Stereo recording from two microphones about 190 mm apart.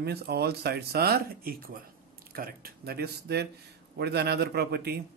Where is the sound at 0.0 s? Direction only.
55° right (ahead or behind).